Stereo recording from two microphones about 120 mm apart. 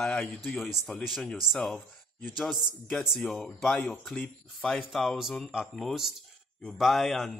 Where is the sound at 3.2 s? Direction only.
5° left (ahead or behind).